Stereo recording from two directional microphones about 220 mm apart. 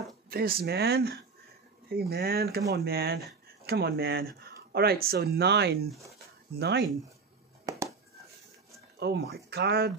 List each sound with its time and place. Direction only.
0.3 s speech: 45° right (ahead or behind)
7.7 s a sound: 15° right (ahead or behind)
9.0 s speech: 50° right (ahead or behind)